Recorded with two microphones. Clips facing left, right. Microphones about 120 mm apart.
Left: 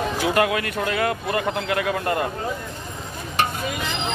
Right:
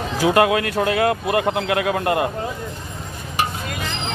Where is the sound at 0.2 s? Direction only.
25° right (ahead or behind).